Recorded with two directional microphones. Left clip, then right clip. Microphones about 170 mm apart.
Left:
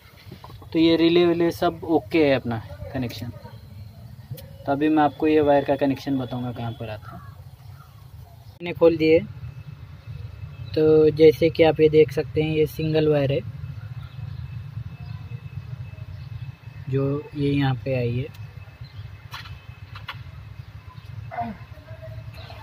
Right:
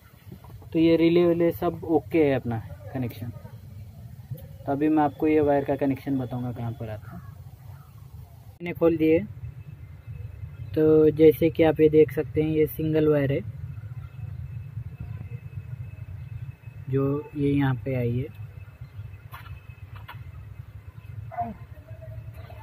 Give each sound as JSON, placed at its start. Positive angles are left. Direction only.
{"t": 0.7, "sound": "speech", "side_deg": 20}
{"t": 4.6, "sound": "speech", "side_deg": 15}
{"t": 8.5, "sound": "speech", "side_deg": 20}
{"t": 10.7, "sound": "speech", "side_deg": 10}
{"t": 16.9, "sound": "speech", "side_deg": 10}